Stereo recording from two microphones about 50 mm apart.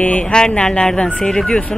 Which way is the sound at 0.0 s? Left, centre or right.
Left.